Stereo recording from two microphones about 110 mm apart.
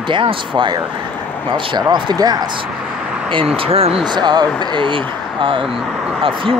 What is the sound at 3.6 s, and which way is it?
Speech, 60° right (ahead or behind).